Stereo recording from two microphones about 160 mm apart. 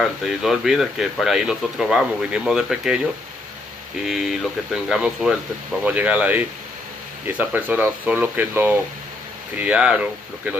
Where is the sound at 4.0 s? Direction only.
Centre (ahead or behind).